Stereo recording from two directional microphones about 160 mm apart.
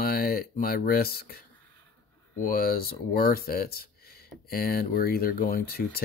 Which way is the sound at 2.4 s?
70° left (ahead or behind).